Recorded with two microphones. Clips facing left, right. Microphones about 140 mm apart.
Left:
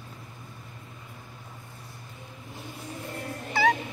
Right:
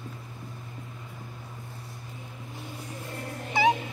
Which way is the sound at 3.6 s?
20° right (ahead or behind).